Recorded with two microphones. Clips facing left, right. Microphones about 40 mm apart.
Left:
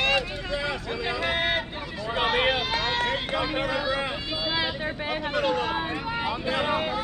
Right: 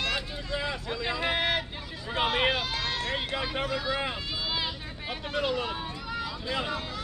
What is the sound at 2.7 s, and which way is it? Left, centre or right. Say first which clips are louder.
Run: left 6 dB; left.